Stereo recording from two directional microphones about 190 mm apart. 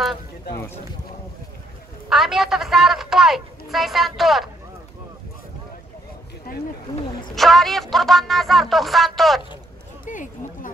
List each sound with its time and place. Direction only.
2.0 s a woman's voice: centre (ahead or behind)
6.5 s speech: 50° left (ahead or behind)
7.3 s a woman's voice: centre (ahead or behind)
10.0 s a sound: 45° left (ahead or behind)